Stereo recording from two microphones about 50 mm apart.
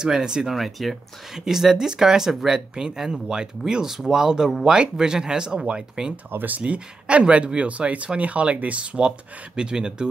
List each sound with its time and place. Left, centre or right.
0.0 s speech: centre
0.5 s speech: centre
6.3 s speech: right; by 10.0 s centre